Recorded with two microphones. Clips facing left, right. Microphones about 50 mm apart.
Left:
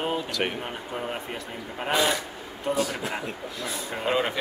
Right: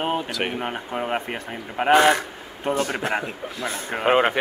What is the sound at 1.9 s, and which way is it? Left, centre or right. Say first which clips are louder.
A man's voice: right 8 dB; right.